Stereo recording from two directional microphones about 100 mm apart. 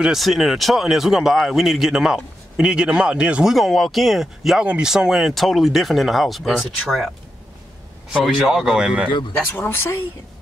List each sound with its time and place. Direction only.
0.0 s speech: centre (ahead or behind)
8.1 s speech: 5° right (ahead or behind)
9.5 s speech: 20° left (ahead or behind)